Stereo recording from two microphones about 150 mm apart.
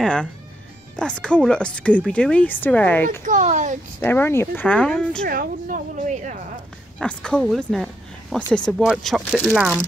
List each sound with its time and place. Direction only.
0.0 s speech: 5° left (ahead or behind)
3.3 s a woman's voice: 55° right (ahead or behind)
4.0 s speech: 15° left (ahead or behind)
5.2 s a woman's voice: 70° right (ahead or behind); by 6.3 s 55° right (ahead or behind)
7.0 s speech: 5° left (ahead or behind)